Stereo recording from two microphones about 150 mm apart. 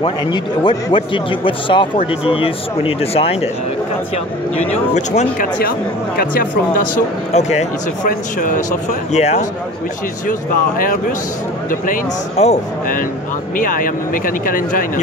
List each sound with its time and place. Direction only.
0.0 s speech: 30° left (ahead or behind)
4.9 s speech: 50° left (ahead or behind)
5.6 s speech: 90° left
7.3 s speech: 50° left (ahead or behind)
8.1 s speech: 65° left (ahead or behind)
9.1 s speech: 45° left (ahead or behind)
10.8 s speech: 70° left (ahead or behind)
12.4 s speech: 45° left (ahead or behind)
13.6 s speech: 65° left (ahead or behind)